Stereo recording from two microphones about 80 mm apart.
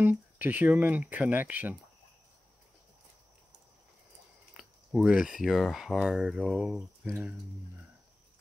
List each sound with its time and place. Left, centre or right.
0.0 s speech: right
4.6 s speech: centre